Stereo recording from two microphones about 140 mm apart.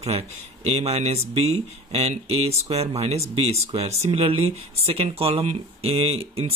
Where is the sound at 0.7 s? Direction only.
50° right (ahead or behind).